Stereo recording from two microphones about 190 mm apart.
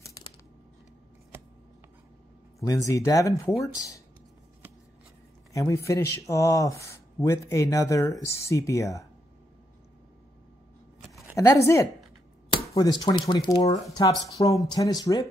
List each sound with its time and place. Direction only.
2.6 s speech: 15° left (ahead or behind)
5.5 s speech: 15° left (ahead or behind)
11.3 s speech: 15° left (ahead or behind)